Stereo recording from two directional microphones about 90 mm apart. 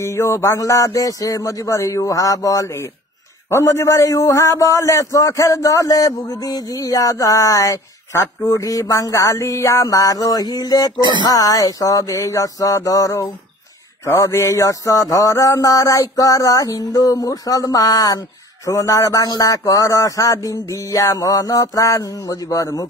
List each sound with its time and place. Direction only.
0.0 s a man's voice: 30° left (ahead or behind)
11.0 s speech: 60° right (ahead or behind)
11.2 s a man's voice: 40° left (ahead or behind)